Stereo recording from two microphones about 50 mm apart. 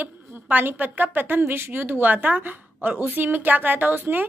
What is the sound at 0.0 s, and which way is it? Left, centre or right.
A woman's voice, right.